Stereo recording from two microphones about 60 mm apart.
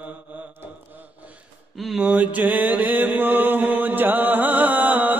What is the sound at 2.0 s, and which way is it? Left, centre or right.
Mantra, right.